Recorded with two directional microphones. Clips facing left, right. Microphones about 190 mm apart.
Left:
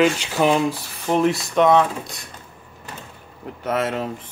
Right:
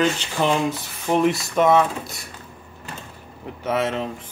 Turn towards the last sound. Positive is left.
turn(degrees=0)  # may be behind; listen again after turning